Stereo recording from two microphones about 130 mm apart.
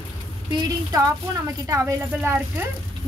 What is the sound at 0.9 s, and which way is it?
Speech, 25° right (ahead or behind).